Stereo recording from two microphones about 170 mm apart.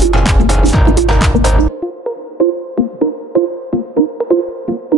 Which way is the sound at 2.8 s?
Centre (ahead or behind).